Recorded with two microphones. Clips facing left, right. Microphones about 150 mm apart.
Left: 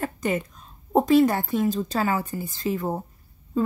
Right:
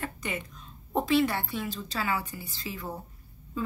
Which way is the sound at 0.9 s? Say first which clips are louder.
Left 7 dB; 40° left (ahead or behind).